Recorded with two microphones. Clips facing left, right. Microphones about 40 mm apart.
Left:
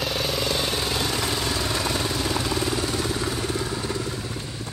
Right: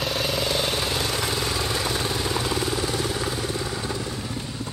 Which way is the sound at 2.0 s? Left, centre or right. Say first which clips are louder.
Even; right.